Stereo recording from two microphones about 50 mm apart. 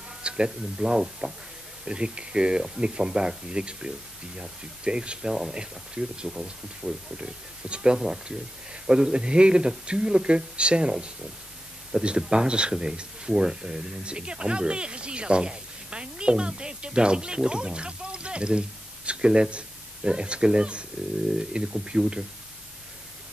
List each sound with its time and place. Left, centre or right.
0.2 s speech: centre